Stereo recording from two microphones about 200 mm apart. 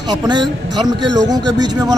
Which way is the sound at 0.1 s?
20° right (ahead or behind).